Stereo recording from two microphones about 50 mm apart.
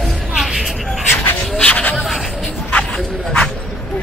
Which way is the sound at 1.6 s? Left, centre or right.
Left.